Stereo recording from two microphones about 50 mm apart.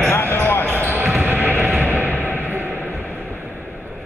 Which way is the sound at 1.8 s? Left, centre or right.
Right.